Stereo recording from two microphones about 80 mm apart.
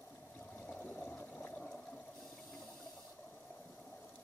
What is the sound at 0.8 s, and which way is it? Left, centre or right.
Water, left.